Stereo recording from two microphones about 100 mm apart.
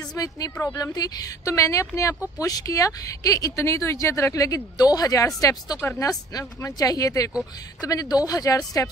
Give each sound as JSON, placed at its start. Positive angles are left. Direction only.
{"t": 0.1, "sound": "speech", "side_deg": 40}